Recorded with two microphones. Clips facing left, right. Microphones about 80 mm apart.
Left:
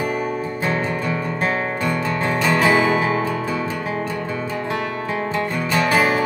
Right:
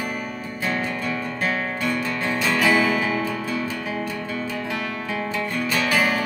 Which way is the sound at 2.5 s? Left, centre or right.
Left.